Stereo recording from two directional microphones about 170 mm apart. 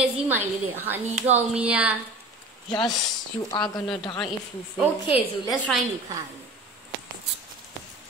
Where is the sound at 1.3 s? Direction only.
5° right (ahead or behind).